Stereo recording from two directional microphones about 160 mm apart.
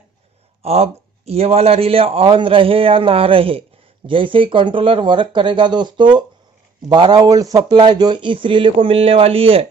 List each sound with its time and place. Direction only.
0.6 s a man's voice: 40° right (ahead or behind)